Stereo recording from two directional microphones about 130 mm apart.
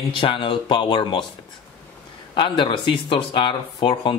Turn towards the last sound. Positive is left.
turn(degrees=40)  # may be behind; listen again after turning